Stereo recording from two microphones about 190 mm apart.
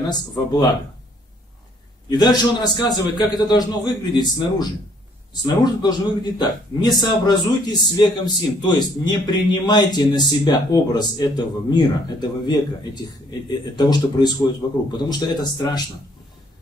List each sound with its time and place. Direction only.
2.0 s a man's voice: 20° left (ahead or behind)